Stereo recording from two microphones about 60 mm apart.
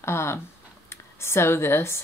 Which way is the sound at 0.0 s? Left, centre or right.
Left.